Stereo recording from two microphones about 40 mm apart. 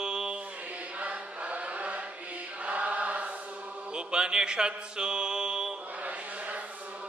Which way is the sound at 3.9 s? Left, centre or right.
Right.